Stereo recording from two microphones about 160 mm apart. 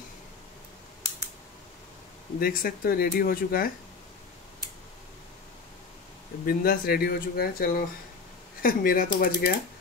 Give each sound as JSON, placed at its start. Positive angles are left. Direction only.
{"t": 2.3, "sound": "speech", "side_deg": 65}
{"t": 6.4, "sound": "speech", "side_deg": 65}